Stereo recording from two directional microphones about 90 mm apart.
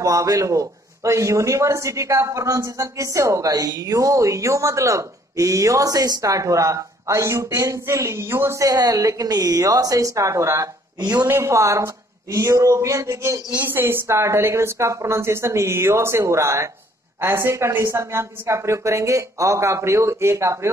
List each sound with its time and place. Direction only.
0.0 s a man's voice: 40° right (ahead or behind)
11.0 s a man's voice: 45° right (ahead or behind)
11.2 s a man's voice: 30° right (ahead or behind)